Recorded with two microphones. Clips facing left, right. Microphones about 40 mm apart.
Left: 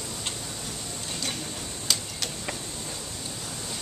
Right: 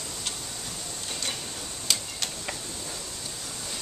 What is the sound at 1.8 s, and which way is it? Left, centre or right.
Tick-tock, centre.